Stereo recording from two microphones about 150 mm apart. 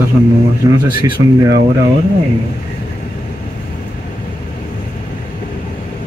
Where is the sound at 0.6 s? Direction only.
25° right (ahead or behind).